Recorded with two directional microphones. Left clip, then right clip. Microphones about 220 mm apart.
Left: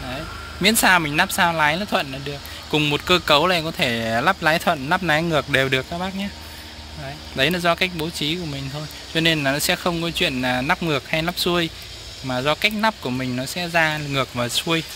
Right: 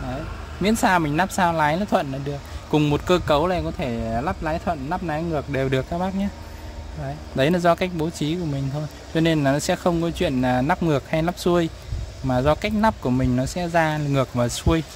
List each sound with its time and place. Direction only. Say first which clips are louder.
0.6 s speech: left 3 dB; 10° right (ahead or behind); by 5.6 s 5° left (ahead or behind)
5.7 s speech: left 1 dB; 15° right (ahead or behind)
7.3 s speech: even; 20° right (ahead or behind)